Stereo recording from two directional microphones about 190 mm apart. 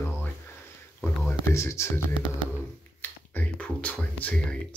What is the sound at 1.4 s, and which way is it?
Speech, 15° left (ahead or behind).